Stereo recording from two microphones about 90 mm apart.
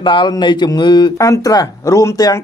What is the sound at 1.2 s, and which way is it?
Speech, 40° left (ahead or behind).